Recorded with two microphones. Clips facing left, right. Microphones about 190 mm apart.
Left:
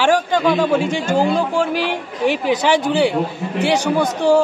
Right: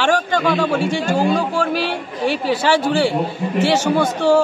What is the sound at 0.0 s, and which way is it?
A man's voice, 20° left (ahead or behind).